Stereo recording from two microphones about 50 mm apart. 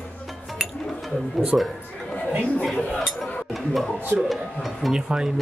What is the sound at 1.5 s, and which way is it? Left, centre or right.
Speech, centre.